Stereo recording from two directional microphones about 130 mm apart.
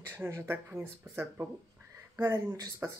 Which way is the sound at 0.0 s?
20° right (ahead or behind).